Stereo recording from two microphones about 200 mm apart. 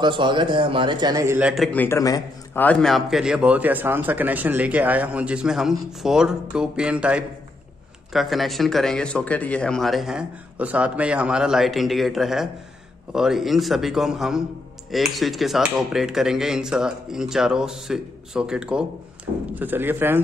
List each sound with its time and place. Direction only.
0.0 s a man's voice: 25° right (ahead or behind)
1.5 s a man's voice: 5° left (ahead or behind)